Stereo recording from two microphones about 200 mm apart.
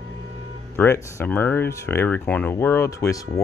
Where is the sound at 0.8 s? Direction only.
10° left (ahead or behind).